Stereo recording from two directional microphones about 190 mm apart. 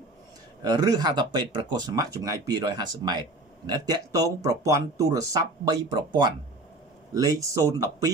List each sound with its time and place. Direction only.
0.6 s speech: 20° right (ahead or behind)